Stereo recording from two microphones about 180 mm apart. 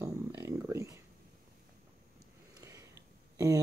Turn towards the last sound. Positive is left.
turn(degrees=-15)  # may be behind; listen again after turning